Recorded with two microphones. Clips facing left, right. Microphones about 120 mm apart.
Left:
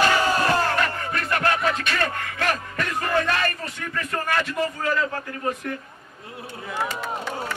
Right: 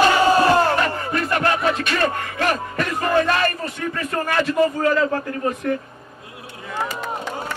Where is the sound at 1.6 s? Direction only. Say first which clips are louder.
Right 4 dB; 30° right (ahead or behind).